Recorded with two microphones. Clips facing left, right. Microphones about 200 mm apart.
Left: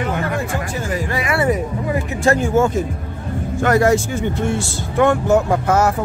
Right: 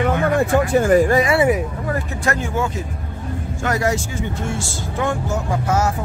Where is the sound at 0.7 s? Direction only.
50° right (ahead or behind).